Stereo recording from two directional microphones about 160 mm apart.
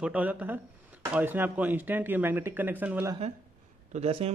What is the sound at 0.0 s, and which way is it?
Speech, 10° right (ahead or behind).